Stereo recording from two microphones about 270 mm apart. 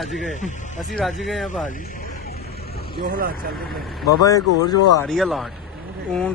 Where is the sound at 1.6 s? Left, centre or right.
Left.